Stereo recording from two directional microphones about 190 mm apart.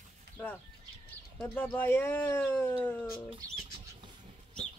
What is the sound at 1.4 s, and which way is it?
Speech, 10° left (ahead or behind).